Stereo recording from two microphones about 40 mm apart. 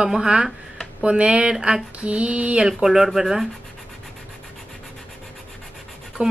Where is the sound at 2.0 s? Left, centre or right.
Right.